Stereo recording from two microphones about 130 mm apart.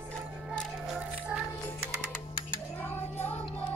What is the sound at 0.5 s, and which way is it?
Music, centre (ahead or behind).